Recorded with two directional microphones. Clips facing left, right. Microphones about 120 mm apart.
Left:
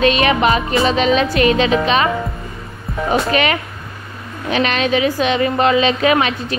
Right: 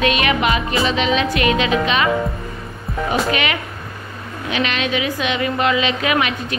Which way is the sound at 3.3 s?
40° left (ahead or behind).